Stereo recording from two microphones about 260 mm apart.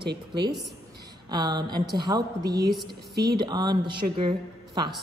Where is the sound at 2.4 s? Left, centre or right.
Right.